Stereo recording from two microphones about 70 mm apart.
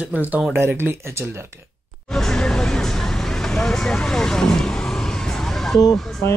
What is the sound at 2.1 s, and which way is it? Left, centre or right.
Vehicle, centre.